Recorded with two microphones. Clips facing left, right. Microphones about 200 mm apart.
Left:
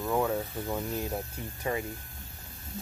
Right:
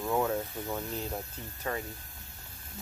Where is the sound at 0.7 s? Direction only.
10° left (ahead or behind).